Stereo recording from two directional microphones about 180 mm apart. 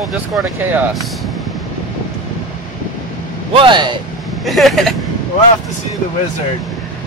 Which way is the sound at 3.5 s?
25° right (ahead or behind).